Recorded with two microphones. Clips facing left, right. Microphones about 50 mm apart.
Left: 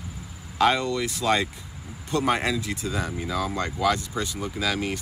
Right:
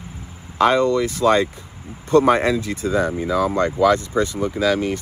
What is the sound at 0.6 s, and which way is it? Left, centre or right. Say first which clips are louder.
Speech: right 6 dB; right.